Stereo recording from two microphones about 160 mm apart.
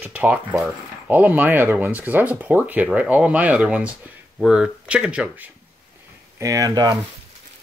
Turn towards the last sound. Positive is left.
turn(degrees=-25)  # may be behind; listen again after turning